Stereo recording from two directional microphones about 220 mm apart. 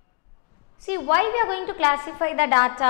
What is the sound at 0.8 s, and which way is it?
A woman's voice, 10° left (ahead or behind).